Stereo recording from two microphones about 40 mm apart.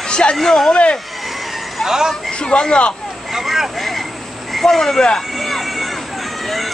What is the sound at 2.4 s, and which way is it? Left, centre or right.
Speech, left.